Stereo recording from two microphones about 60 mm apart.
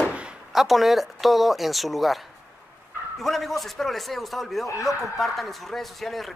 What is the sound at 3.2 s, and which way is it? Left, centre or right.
Speech, centre.